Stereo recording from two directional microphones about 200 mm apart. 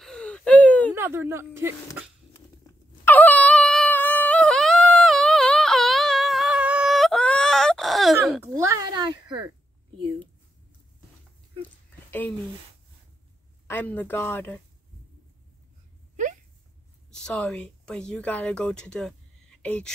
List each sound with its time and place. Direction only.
0.0 s whimper: 5° left (ahead or behind)
0.9 s speech: 10° right (ahead or behind)
2.3 s dog: 10° left (ahead or behind)
8.5 s a sound: 15° right (ahead or behind)
13.7 s speech: 10° left (ahead or behind)
17.1 s speech: 5° left (ahead or behind)